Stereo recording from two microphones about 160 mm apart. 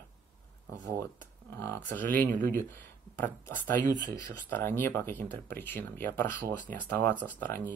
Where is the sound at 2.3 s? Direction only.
55° right (ahead or behind).